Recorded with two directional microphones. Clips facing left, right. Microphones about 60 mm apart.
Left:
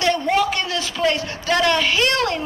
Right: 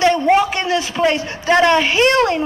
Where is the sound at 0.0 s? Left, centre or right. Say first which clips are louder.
Right 5 dB; right.